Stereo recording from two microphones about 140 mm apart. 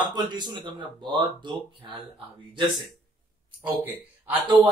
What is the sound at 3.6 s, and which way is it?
Speech, 10° right (ahead or behind).